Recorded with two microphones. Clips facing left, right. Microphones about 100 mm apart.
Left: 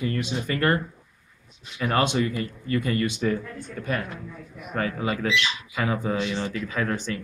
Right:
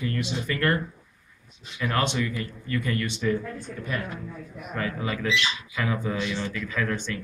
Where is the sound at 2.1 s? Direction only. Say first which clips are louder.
Left 4 dB; 35° left (ahead or behind).